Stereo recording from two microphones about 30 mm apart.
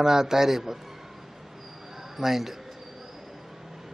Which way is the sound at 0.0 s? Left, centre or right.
Centre.